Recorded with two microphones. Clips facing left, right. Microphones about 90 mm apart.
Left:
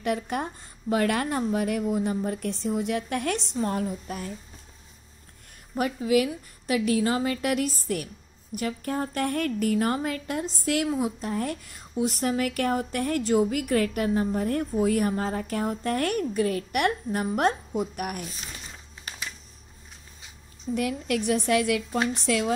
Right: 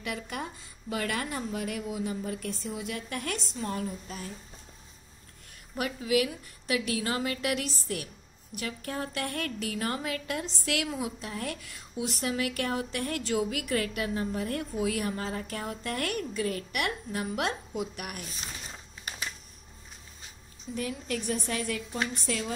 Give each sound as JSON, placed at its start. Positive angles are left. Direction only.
{"t": 0.0, "sound": "a woman's voice", "side_deg": 50}
{"t": 6.2, "sound": "a woman's voice", "side_deg": 35}
{"t": 7.4, "sound": "a woman's voice", "side_deg": 40}
{"t": 9.8, "sound": "a woman's voice", "side_deg": 30}
{"t": 20.7, "sound": "a woman's voice", "side_deg": 35}
{"t": 21.3, "sound": "a woman's voice", "side_deg": 75}
{"t": 22.2, "sound": "speech", "side_deg": 60}